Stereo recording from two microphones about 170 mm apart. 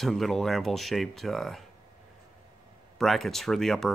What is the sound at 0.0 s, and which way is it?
Speech, centre (ahead or behind).